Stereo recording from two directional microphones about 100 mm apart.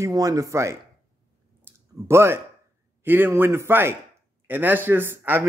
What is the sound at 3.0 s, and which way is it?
Speech, 20° right (ahead or behind).